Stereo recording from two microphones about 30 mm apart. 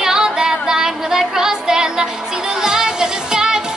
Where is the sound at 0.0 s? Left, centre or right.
Centre.